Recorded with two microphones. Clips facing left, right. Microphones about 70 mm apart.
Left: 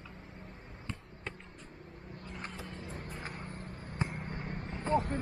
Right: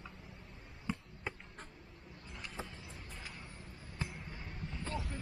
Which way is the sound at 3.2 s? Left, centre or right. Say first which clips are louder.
Left 7 dB; left.